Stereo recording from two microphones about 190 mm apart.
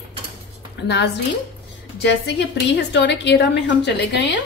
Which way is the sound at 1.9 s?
65° left (ahead or behind).